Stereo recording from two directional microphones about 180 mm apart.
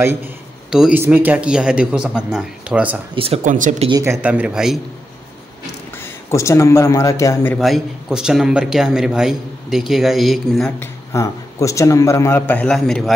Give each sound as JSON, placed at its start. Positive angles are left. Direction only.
{"t": 0.7, "sound": "a man's voice", "side_deg": -5}
{"t": 3.4, "sound": "speech", "side_deg": -45}
{"t": 3.9, "sound": "speech", "side_deg": -15}
{"t": 6.0, "sound": "a man's voice", "side_deg": 15}
{"t": 7.5, "sound": "a man's voice", "side_deg": 0}
{"t": 10.8, "sound": "a man's voice", "side_deg": 15}